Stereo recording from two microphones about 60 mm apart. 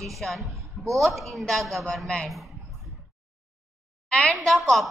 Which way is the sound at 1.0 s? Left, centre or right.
Centre.